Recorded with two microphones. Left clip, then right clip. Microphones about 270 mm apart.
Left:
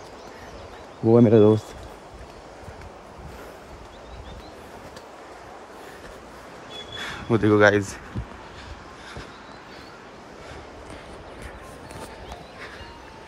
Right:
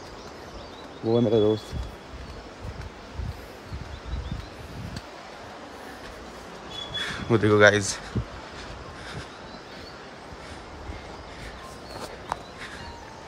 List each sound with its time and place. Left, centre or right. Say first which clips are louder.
1.0 s speech: left 6 dB; left
7.0 s speech: even; centre